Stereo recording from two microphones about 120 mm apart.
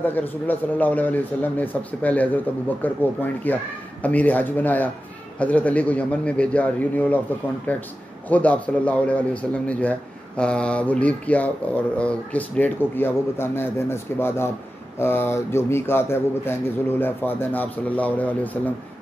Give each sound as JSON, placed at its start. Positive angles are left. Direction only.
{"t": 0.0, "sound": "a man's voice", "side_deg": 15}